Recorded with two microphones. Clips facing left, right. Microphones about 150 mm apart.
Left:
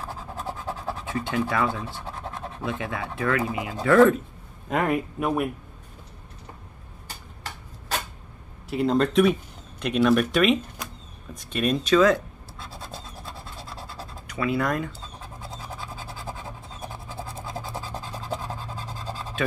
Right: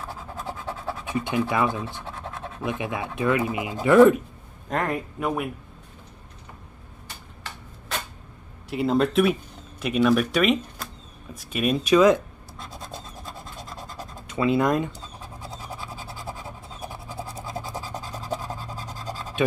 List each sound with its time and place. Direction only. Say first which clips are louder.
1.0 s speech: right 2 dB; 20° right (ahead or behind)
4.6 s speech: left 2 dB; 5° left (ahead or behind)
8.6 s speech: even; centre (ahead or behind)
12.6 s scratch: right 1 dB; 15° right (ahead or behind)
18.3 s a sound: right 1 dB; 10° right (ahead or behind)